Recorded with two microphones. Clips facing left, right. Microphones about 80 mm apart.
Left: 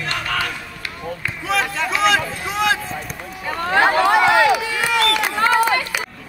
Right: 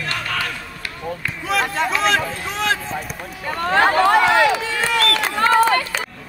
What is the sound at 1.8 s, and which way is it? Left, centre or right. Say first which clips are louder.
Speech: left 1 dB; centre.